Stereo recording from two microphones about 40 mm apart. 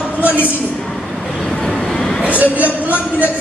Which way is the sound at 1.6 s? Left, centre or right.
Centre.